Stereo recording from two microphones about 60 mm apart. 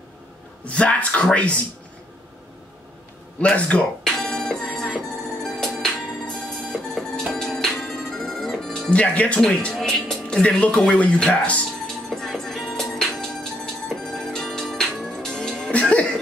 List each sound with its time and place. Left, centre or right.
0.7 s speech: centre
3.3 s speech: left
4.0 s music: centre
8.9 s speech: left
9.8 s music: centre
10.4 s speech: centre
12.1 s music: centre
15.7 s music: left